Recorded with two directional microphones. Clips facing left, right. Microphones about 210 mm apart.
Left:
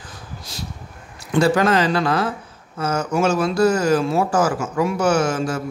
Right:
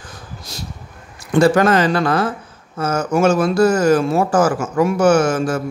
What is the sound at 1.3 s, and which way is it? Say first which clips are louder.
Speech: right 3 dB; 50° right (ahead or behind).